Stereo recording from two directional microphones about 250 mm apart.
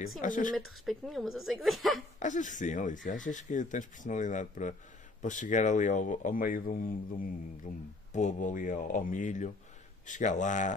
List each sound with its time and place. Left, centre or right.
0.2 s speech: left
0.8 s a woman's voice: centre
2.1 s speech: left